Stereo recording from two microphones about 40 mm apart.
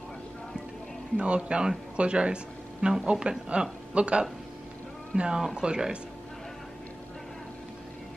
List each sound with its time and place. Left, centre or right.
1.1 s speech: right